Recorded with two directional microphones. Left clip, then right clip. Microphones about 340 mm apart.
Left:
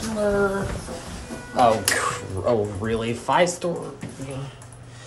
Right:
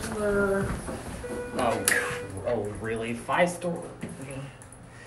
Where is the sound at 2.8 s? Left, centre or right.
Centre.